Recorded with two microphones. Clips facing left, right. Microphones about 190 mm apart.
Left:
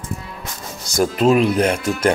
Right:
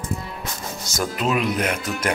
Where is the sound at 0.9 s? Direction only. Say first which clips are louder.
Left 8 dB; 30° left (ahead or behind).